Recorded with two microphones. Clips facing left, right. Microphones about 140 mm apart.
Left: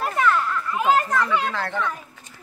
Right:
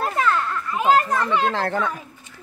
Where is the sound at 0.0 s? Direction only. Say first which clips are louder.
Even; 25° right (ahead or behind).